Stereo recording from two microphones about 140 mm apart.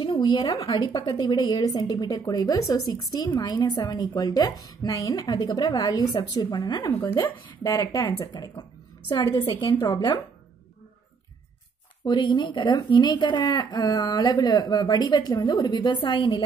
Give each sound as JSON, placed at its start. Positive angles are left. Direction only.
{"t": 0.0, "sound": "speech", "side_deg": 35}
{"t": 6.9, "sound": "speech", "side_deg": 15}
{"t": 12.0, "sound": "speech", "side_deg": 35}